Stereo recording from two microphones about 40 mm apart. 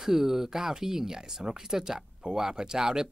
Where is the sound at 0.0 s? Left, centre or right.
Centre.